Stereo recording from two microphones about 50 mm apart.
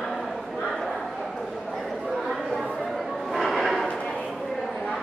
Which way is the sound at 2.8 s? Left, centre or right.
Centre.